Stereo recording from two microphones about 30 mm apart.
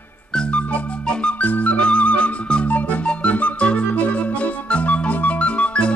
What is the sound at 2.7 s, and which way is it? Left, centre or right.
Organ, left.